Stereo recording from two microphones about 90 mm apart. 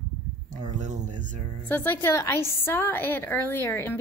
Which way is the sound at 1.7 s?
20° left (ahead or behind).